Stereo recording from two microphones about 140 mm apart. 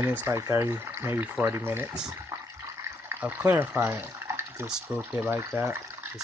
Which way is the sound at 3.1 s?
15° right (ahead or behind).